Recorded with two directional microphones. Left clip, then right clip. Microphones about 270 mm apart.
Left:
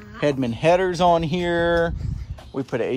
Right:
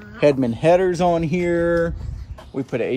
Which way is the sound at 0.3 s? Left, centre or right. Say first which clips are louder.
Right 2 dB; centre.